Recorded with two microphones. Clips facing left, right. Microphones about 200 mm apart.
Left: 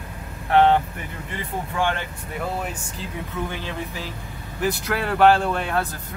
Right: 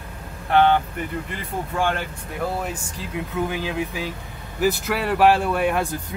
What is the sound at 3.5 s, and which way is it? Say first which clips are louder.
Speech: right 5 dB; 10° right (ahead or behind).